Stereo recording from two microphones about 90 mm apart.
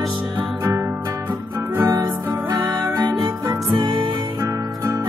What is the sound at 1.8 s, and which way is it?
Music, 40° right (ahead or behind).